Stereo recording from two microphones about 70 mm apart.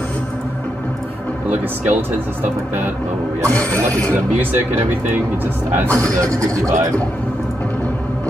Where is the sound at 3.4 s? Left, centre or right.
Left.